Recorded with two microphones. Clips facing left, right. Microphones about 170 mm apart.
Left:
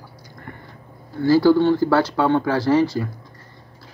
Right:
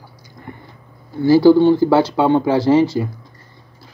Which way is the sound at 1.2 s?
20° right (ahead or behind).